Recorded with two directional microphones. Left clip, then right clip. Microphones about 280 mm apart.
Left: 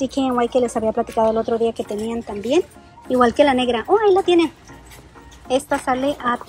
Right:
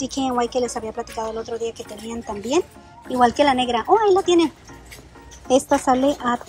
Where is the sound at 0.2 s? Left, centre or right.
Centre.